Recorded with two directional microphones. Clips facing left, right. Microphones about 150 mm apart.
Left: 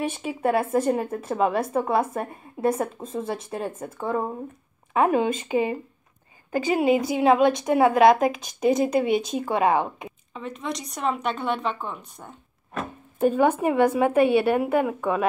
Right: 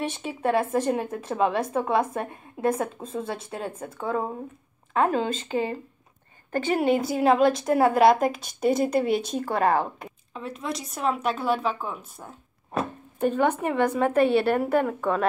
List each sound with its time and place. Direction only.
0.0 s speech: 10° left (ahead or behind)
4.9 s a woman's voice: 10° left (ahead or behind)
9.5 s a woman's voice: 15° left (ahead or behind)
10.3 s speech: centre (ahead or behind)
13.2 s a woman's voice: 10° left (ahead or behind)